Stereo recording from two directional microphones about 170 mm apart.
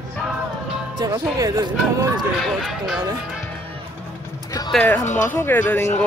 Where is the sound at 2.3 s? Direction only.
Centre (ahead or behind).